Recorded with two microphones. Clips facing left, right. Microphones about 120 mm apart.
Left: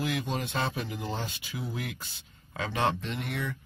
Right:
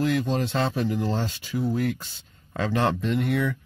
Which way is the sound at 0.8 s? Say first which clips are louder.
Right 9 dB; 60° right (ahead or behind).